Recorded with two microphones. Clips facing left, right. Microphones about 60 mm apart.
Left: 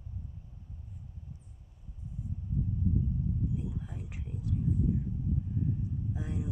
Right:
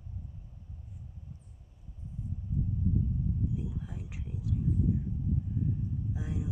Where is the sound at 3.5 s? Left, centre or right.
Centre.